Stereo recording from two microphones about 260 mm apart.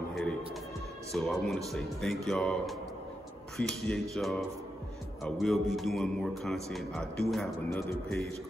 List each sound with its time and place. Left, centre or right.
0.1 s a man's voice: centre